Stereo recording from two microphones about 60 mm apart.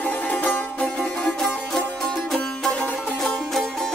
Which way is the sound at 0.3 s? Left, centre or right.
Left.